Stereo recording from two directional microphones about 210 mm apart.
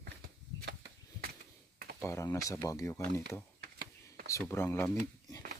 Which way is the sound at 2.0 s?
15° left (ahead or behind).